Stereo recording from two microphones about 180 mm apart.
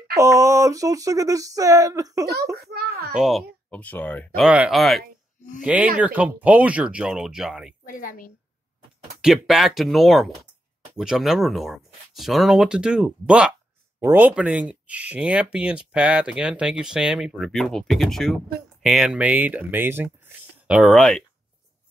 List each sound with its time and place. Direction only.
0.1 s a sound: 15° right (ahead or behind)
2.5 s a child's voice: 60° right (ahead or behind)
3.2 s speech: centre (ahead or behind)
4.4 s speech: 5° right (ahead or behind)
7.8 s a woman's voice: 50° left (ahead or behind)
9.2 s speech: centre (ahead or behind)